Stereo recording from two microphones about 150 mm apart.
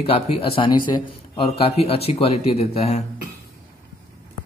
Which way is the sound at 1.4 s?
40° left (ahead or behind).